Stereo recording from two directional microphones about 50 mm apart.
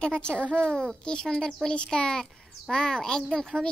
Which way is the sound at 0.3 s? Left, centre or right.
Right.